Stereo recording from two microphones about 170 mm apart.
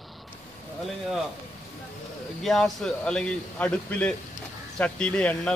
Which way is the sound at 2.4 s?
Centre (ahead or behind).